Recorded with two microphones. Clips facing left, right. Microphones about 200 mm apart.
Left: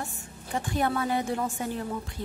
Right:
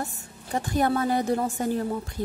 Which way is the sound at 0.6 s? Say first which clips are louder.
Right 4 dB; 40° right (ahead or behind).